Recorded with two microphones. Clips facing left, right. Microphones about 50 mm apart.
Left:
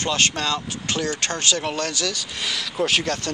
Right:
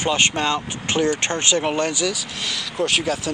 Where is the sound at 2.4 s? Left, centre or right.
Centre.